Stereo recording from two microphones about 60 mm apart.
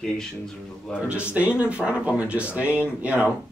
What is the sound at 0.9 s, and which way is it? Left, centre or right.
Speech, centre.